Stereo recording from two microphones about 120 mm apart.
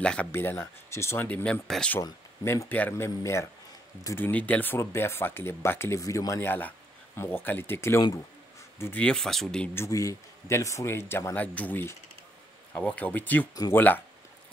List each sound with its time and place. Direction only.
0.0 s speech: 10° left (ahead or behind)
0.3 s speech: 20° left (ahead or behind)
2.4 s speech: 20° left (ahead or behind)
4.3 s speech: 10° left (ahead or behind)
9.0 s speech: 5° left (ahead or behind)
9.8 s speech: 25° left (ahead or behind)